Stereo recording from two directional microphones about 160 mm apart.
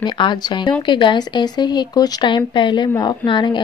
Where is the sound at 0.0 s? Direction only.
30° left (ahead or behind).